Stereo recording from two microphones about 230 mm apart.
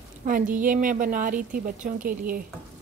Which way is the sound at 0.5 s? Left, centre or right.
Right.